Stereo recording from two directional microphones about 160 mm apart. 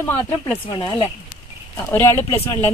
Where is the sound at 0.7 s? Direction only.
25° left (ahead or behind).